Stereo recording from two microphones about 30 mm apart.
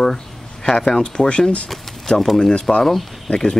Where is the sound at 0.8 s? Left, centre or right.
Left.